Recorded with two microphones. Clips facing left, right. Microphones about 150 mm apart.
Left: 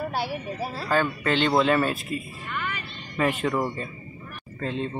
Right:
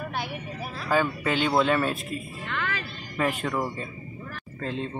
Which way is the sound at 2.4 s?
90° right.